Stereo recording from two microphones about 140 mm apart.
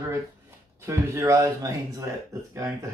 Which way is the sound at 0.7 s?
20° right (ahead or behind).